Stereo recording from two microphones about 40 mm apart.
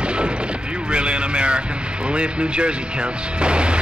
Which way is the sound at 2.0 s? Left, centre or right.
Right.